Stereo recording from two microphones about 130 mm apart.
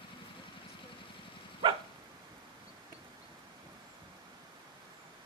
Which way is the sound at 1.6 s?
40° right (ahead or behind).